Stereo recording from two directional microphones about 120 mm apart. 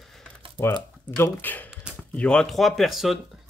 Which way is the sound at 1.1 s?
15° left (ahead or behind).